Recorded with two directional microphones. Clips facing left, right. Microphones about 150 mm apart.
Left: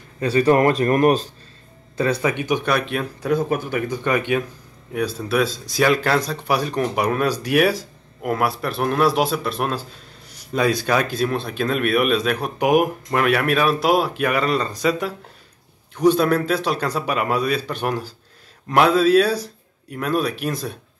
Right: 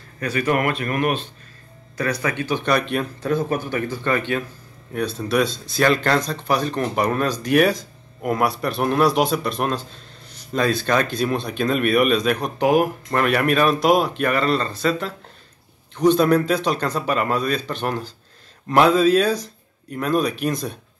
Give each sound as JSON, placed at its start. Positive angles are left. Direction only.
{"t": 0.2, "sound": "speech", "side_deg": 30}
{"t": 2.0, "sound": "speech", "side_deg": 25}
{"t": 2.6, "sound": "speech", "side_deg": 5}
{"t": 13.2, "sound": "speech", "side_deg": 0}